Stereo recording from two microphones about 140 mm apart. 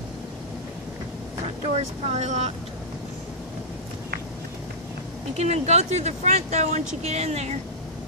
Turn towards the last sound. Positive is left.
turn(degrees=-50)  # may be behind; listen again after turning